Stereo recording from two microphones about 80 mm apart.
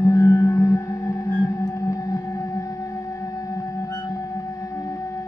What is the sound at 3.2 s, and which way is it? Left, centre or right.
Music, left.